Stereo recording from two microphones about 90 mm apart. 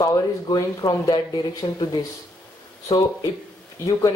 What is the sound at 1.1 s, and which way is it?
Speech, 55° left (ahead or behind).